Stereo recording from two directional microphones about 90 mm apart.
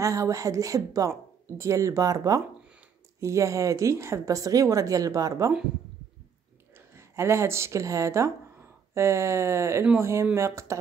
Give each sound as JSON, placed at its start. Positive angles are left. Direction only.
{"t": 0.0, "sound": "a woman's voice", "side_deg": -35}
{"t": 6.9, "sound": "a woman's voice", "side_deg": -30}